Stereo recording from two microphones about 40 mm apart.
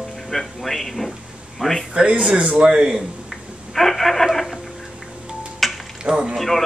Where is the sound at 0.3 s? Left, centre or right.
Centre.